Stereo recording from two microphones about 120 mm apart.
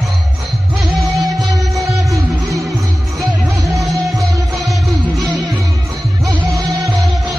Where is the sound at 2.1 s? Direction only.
25° right (ahead or behind).